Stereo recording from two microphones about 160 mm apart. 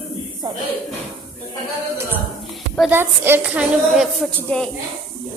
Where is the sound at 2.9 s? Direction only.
15° right (ahead or behind); by 4.6 s 10° left (ahead or behind).